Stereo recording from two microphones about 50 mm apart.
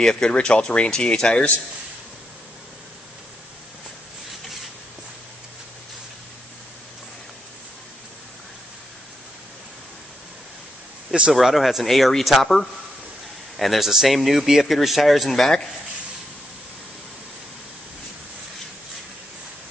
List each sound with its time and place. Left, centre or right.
0.0 s speech: centre
11.3 s speech: centre
13.6 s speech: centre